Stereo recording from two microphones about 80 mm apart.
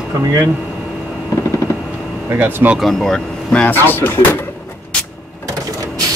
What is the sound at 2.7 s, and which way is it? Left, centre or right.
Speech, centre.